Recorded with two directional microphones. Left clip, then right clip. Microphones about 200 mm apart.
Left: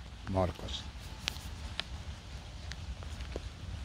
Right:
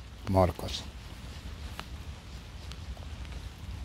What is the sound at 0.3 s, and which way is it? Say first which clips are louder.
Speech: right 7 dB; 35° right (ahead or behind).